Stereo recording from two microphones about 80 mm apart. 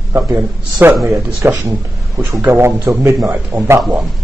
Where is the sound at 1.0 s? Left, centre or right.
Right.